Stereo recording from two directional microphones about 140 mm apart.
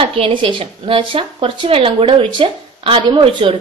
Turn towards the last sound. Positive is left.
turn(degrees=-35)  # may be behind; listen again after turning